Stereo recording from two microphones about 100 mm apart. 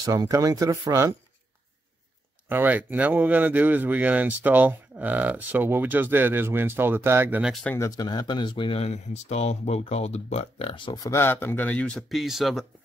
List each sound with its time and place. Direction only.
0.0 s speech: 35° right (ahead or behind)
2.5 s speech: 20° right (ahead or behind)
7.8 s speech: 40° left (ahead or behind); by 10.9 s 70° left (ahead or behind)
10.9 s speech: 35° left (ahead or behind)
11.1 s speech: 20° left (ahead or behind)
12.1 s speech: centre (ahead or behind)